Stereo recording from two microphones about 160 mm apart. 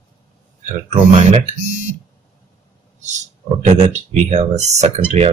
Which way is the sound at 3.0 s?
45° right (ahead or behind).